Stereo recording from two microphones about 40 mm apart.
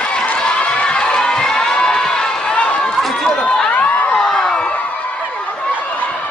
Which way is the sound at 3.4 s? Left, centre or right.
Left.